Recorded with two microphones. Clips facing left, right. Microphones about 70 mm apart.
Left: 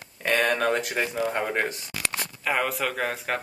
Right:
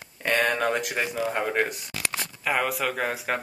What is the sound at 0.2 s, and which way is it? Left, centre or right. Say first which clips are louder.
Speech: left 1 dB; centre.